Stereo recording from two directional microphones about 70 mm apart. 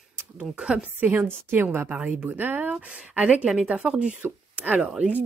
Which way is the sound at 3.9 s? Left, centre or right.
Centre.